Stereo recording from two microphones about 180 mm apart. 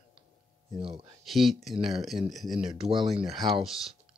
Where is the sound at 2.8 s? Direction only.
25° right (ahead or behind).